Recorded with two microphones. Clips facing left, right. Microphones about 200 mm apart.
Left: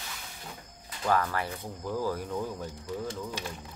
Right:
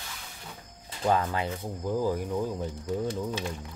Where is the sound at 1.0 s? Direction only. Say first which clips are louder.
Right 2 dB; 20° right (ahead or behind).